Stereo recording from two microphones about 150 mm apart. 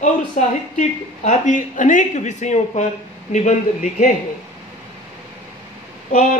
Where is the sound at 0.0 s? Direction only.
55° left (ahead or behind).